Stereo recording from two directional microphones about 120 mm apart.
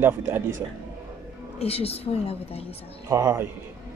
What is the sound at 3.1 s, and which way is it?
Speech, 25° right (ahead or behind).